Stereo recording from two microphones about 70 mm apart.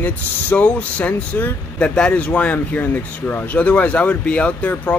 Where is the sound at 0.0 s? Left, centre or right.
Left.